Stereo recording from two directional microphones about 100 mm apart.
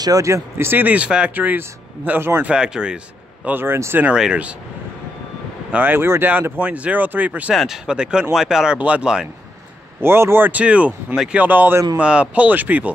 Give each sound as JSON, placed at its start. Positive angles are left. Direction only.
{"t": 0.0, "sound": "speech", "side_deg": -35}
{"t": 2.5, "sound": "speech", "side_deg": -10}
{"t": 3.4, "sound": "speech", "side_deg": -20}
{"t": 4.1, "sound": "speech", "side_deg": -10}
{"t": 5.7, "sound": "speech", "side_deg": -20}
{"t": 7.5, "sound": "speech", "side_deg": -5}
{"t": 10.0, "sound": "speech", "side_deg": -25}